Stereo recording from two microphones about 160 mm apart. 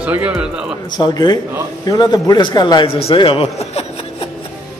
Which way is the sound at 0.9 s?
25° left (ahead or behind).